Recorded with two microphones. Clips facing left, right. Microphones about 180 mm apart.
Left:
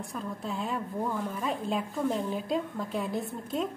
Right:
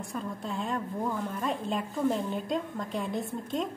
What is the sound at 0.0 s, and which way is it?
A woman's voice, centre (ahead or behind).